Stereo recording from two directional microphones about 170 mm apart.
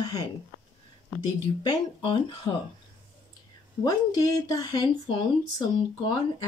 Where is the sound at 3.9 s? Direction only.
25° left (ahead or behind).